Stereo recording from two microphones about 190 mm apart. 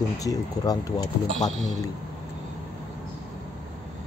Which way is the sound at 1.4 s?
Centre (ahead or behind).